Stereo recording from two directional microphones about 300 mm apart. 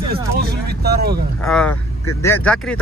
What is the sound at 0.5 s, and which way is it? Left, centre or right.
Speech, right.